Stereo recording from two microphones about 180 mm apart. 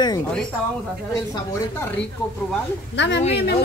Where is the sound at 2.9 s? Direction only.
75° left (ahead or behind).